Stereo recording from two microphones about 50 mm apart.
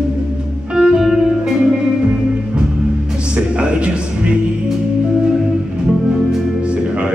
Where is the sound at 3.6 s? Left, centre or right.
Right.